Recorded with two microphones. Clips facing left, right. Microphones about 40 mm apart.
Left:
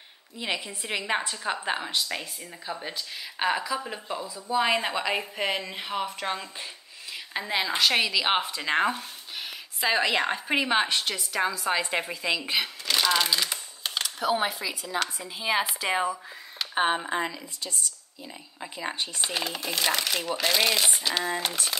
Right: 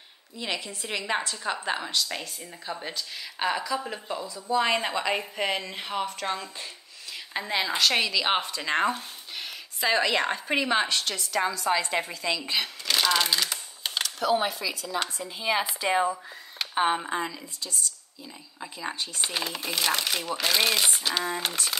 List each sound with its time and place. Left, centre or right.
0.4 s speech: centre
2.9 s a woman's voice: centre
12.8 s a woman's voice: centre
14.0 s a woman's voice: centre
16.7 s speech: centre
17.3 s speech: left
18.6 s speech: left
19.2 s a woman's voice: centre